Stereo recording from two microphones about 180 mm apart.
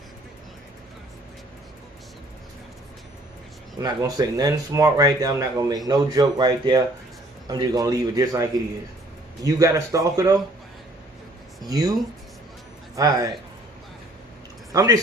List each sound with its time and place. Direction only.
3.7 s speech: 20° right (ahead or behind)
11.6 s speech: 20° right (ahead or behind)
14.7 s speech: 20° right (ahead or behind)